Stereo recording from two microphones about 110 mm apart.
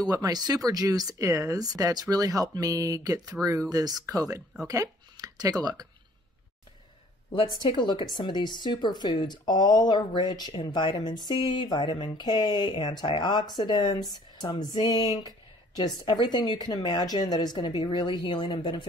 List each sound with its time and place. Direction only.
0.0 s speech: 35° right (ahead or behind)
7.6 s a woman's voice: 45° left (ahead or behind)